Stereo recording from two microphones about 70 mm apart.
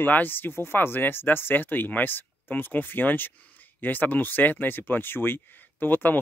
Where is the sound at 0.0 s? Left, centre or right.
Left.